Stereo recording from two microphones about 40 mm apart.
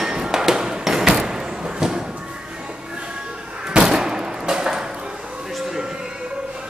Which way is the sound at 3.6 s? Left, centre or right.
Centre.